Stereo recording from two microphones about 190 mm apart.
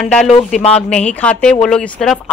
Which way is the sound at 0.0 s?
5° left (ahead or behind).